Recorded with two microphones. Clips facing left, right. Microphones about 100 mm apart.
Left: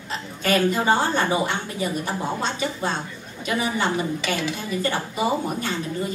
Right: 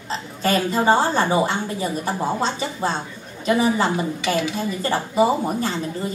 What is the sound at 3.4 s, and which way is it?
A woman's voice, 30° right (ahead or behind).